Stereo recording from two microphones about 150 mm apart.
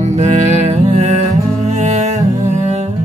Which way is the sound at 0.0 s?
50° right (ahead or behind).